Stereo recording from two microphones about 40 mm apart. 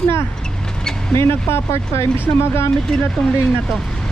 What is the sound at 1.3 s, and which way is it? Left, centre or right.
Speech, left.